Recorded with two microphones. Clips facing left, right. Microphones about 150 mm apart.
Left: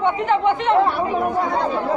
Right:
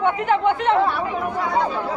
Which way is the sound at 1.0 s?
30° left (ahead or behind).